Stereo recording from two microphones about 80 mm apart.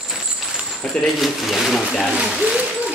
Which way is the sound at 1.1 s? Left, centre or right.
Centre.